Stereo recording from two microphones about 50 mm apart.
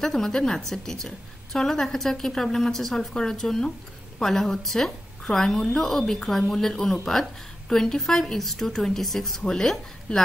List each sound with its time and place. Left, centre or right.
0.0 s a woman's voice: centre